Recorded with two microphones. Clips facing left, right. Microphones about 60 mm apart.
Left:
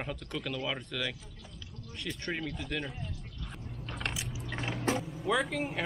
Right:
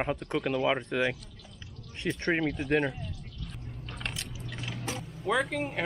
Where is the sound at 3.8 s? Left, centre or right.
Centre.